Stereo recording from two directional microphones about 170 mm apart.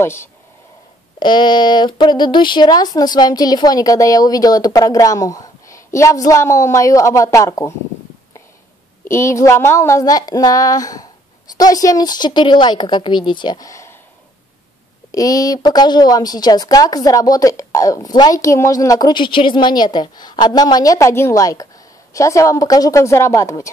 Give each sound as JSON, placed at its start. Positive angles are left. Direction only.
{"t": 0.0, "sound": "speech", "side_deg": 15}
{"t": 1.2, "sound": "a woman's voice", "side_deg": 25}
{"t": 9.0, "sound": "a woman's voice", "side_deg": 15}
{"t": 15.0, "sound": "a woman's voice", "side_deg": 20}